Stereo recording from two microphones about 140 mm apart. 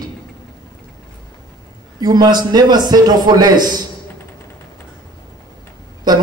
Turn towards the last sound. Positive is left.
turn(degrees=-30)  # may be behind; listen again after turning